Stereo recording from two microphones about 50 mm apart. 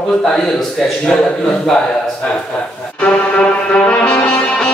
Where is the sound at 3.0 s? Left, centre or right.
Left.